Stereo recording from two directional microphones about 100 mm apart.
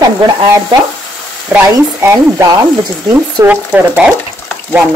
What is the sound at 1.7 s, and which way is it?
Speech, 30° right (ahead or behind).